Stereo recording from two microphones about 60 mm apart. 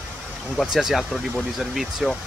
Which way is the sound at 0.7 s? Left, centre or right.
Centre.